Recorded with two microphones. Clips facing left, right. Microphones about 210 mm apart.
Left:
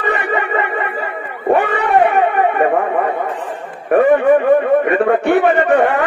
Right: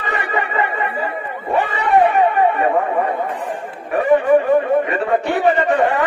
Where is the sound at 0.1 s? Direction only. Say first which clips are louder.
Left 2 dB; 60° left (ahead or behind).